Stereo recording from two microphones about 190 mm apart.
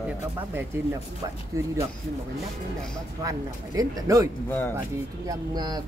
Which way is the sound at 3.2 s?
20° right (ahead or behind).